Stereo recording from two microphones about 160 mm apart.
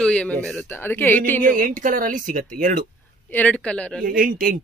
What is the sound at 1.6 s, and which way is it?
Speech, 60° right (ahead or behind).